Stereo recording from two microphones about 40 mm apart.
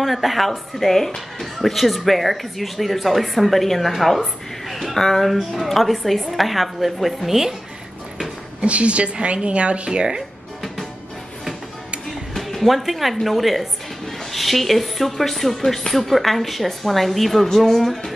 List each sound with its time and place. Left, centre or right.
0.0 s a woman's voice: centre
4.9 s a woman's voice: centre
8.5 s a woman's voice: right
9.8 s speech: centre
12.4 s a woman's voice: centre